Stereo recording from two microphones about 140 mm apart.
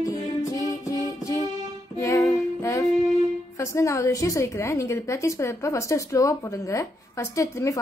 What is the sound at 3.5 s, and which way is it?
A woman's voice, 20° left (ahead or behind).